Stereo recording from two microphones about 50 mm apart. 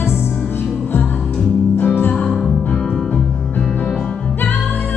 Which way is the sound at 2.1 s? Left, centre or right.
Centre.